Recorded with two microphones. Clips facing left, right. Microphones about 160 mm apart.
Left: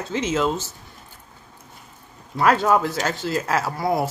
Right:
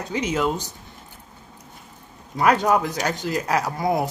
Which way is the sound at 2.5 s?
15° right (ahead or behind).